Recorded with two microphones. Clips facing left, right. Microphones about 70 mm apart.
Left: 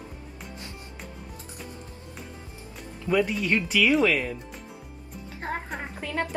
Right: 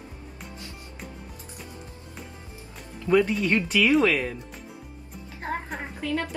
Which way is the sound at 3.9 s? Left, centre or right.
Centre.